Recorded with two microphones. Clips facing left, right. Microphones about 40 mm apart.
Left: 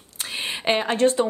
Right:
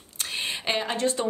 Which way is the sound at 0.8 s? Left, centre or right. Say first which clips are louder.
Left 9 dB; left.